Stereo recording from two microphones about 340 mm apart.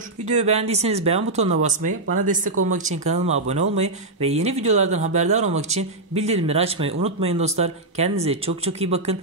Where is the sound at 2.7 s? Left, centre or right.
Right.